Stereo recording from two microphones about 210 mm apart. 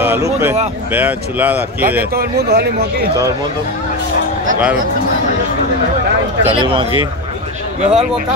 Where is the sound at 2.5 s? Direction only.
50° right (ahead or behind).